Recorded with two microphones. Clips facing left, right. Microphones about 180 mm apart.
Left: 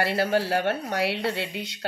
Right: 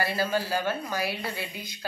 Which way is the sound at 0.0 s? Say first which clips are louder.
Left 4 dB; 65° left (ahead or behind).